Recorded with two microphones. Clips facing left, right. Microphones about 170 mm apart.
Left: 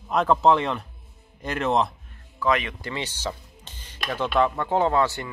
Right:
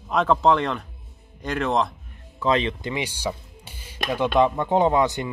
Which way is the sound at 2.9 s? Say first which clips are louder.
Right 3 dB; 10° right (ahead or behind).